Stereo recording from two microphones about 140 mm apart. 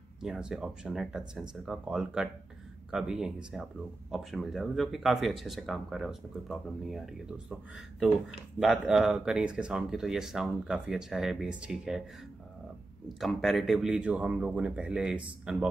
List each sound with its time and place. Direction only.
0.2 s speech: 5° right (ahead or behind)
13.2 s speech: centre (ahead or behind)